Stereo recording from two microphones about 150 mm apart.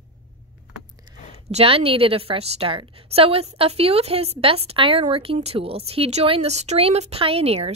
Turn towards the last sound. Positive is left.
turn(degrees=-40)  # may be behind; listen again after turning